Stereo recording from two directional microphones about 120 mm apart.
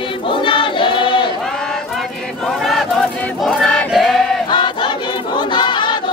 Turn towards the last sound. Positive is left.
turn(degrees=40)  # may be behind; listen again after turning